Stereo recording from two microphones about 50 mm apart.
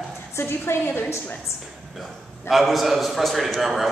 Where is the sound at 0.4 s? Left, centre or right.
Left.